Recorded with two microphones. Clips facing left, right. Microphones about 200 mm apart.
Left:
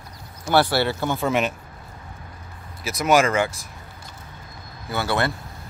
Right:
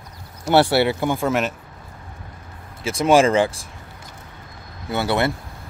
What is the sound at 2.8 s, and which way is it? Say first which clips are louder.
Speech: right 3 dB; 30° right (ahead or behind).